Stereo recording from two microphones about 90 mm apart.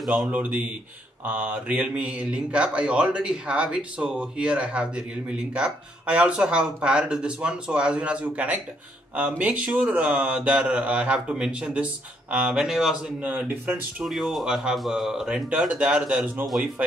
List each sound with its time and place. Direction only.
0.0 s speech: 5° right (ahead or behind)
0.3 s speech: 15° right (ahead or behind)
16.4 s speech: centre (ahead or behind)